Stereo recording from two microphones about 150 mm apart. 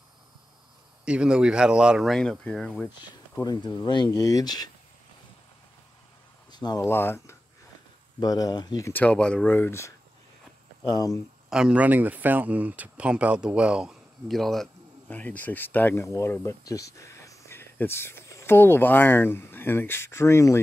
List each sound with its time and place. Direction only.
1.0 s speech: 5° right (ahead or behind)
3.3 s speech: 25° left (ahead or behind)
6.5 s speech: 25° left (ahead or behind)
6.9 s speech: 15° left (ahead or behind)
8.9 s speech: 10° left (ahead or behind); by 11.1 s 25° left (ahead or behind)
11.5 s speech: 5° right (ahead or behind); by 20.6 s 15° left (ahead or behind)